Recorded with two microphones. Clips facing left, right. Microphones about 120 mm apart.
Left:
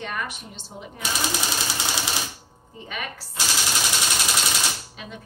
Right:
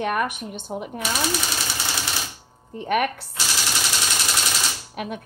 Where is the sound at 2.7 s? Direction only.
60° right (ahead or behind).